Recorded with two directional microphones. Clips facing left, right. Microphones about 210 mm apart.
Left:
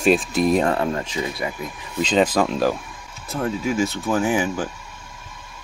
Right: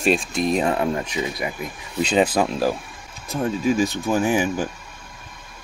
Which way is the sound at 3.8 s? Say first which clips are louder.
Right 1 dB; 15° right (ahead or behind).